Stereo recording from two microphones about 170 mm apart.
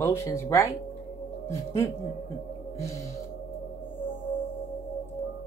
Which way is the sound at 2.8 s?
15° left (ahead or behind).